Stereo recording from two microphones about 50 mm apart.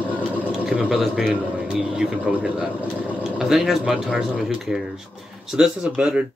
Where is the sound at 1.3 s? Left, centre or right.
Right.